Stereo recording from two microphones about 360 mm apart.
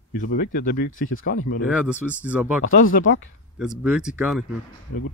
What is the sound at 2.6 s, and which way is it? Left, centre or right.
Speech, left.